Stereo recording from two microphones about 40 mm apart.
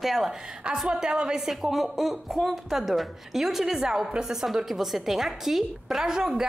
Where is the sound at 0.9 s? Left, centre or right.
Centre.